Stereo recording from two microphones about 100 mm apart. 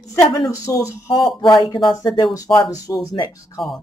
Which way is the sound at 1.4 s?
55° left (ahead or behind).